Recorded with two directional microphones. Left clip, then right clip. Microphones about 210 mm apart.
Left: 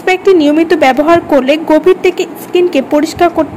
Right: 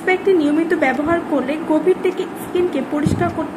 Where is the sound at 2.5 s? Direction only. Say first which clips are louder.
Left 10 dB; 35° left (ahead or behind).